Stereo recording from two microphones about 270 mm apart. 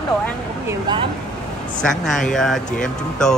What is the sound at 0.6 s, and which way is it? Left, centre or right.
Speech, centre.